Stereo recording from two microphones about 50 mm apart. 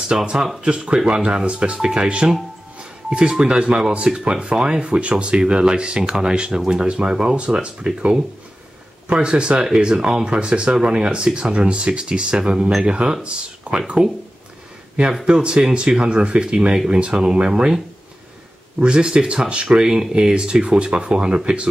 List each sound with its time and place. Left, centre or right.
0.1 s speech: centre
15.2 s speech: centre
18.8 s speech: centre